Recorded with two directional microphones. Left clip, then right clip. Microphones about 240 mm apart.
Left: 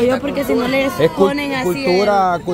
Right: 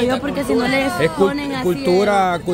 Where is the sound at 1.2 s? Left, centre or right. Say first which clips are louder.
Left 2 dB; centre.